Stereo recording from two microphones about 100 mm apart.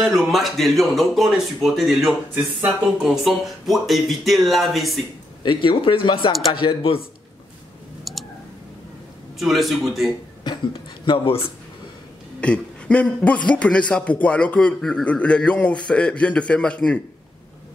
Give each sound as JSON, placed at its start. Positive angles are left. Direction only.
{"t": 0.0, "sound": "speech", "side_deg": 0}
{"t": 5.4, "sound": "speech", "side_deg": 55}
{"t": 8.0, "sound": "clicking", "side_deg": 0}
{"t": 9.4, "sound": "speech", "side_deg": 0}
{"t": 10.4, "sound": "a sound", "side_deg": 50}
{"t": 11.2, "sound": "speech", "side_deg": 70}
{"t": 12.4, "sound": "speech", "side_deg": 10}